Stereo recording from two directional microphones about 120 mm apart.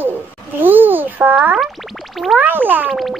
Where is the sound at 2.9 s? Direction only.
Centre (ahead or behind).